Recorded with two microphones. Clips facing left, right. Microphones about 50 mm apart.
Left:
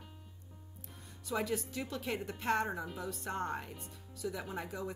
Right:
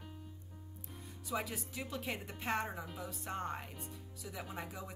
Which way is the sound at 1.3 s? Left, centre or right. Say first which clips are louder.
Left 5 dB; centre.